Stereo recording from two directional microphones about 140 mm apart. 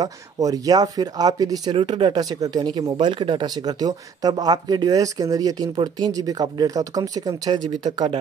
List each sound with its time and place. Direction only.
0.0 s speech: 25° right (ahead or behind)